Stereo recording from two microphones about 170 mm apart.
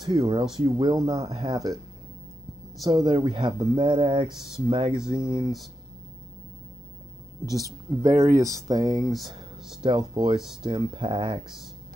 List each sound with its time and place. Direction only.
0.0 s speech: 20° right (ahead or behind)
2.8 s speech: 20° right (ahead or behind)
7.4 s speech: 20° right (ahead or behind)